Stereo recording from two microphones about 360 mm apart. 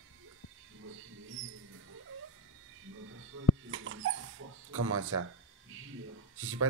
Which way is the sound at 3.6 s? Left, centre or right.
Right.